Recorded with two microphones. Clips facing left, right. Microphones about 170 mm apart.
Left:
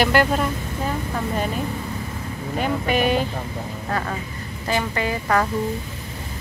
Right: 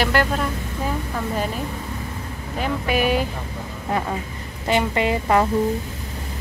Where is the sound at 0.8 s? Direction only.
Centre (ahead or behind).